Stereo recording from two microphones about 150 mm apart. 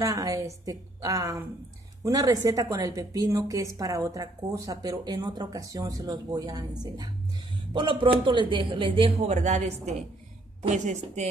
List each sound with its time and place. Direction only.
0.0 s a woman's voice: 25° right (ahead or behind)
9.3 s a woman's voice: 50° right (ahead or behind)